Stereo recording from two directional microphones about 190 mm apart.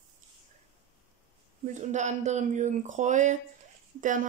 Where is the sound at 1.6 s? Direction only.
40° right (ahead or behind).